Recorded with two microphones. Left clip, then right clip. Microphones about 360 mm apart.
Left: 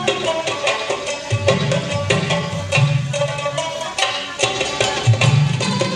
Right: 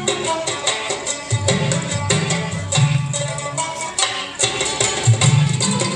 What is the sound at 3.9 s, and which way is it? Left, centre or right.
Music, left.